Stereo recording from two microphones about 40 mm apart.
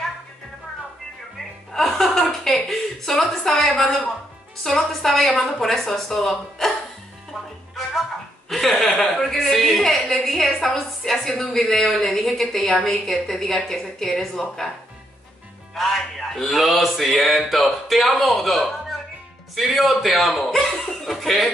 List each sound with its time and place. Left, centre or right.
1.7 s music: centre
2.4 s a woman's voice: centre
8.5 s speech: centre
9.2 s music: centre
10.2 s a woman's voice: centre
15.7 s music: centre